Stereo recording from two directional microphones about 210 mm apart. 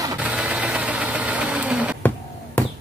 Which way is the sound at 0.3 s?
5° right (ahead or behind).